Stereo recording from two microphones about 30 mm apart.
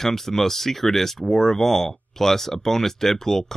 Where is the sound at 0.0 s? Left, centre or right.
Centre.